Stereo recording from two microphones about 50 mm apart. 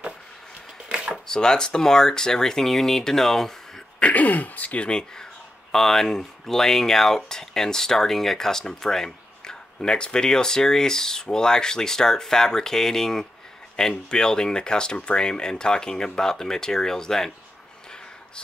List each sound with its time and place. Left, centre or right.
0.8 s a sound: right
1.1 s speech: centre
4.0 s speech: left
4.8 s speech: centre